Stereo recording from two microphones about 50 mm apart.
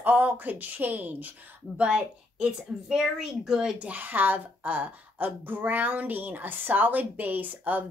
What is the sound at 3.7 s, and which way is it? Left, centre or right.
Speech, right.